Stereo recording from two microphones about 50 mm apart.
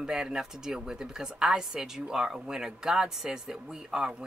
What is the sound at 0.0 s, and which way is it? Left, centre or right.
Speech, centre.